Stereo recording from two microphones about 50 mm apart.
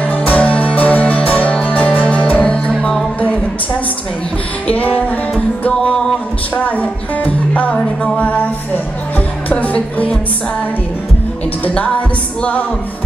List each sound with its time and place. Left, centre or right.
0.1 s music: left
2.8 s music: centre
4.6 s music: left
6.5 s music: left